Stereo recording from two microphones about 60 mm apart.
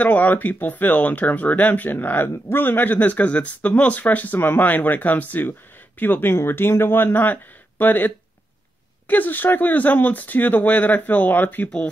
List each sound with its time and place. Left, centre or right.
0.0 s speech: left